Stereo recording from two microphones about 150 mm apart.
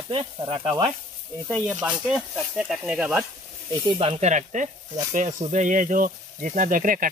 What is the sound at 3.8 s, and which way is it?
Speech, 40° right (ahead or behind).